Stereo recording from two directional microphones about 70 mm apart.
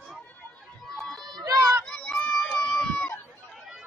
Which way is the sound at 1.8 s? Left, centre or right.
Centre.